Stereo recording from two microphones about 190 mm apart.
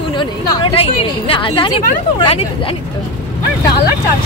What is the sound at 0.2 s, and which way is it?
A woman's voice, 25° left (ahead or behind).